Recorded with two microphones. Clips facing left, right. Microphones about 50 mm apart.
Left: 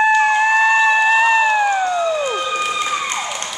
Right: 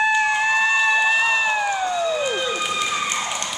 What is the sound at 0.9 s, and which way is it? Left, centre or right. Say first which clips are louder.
Emergency vehicle: left 5 dB; left.